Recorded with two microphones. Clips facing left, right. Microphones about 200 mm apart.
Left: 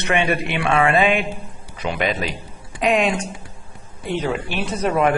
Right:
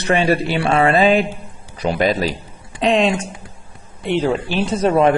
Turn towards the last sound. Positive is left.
turn(degrees=-30)  # may be behind; listen again after turning